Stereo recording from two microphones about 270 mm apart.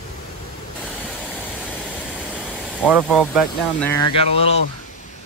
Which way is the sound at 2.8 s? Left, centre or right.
Centre.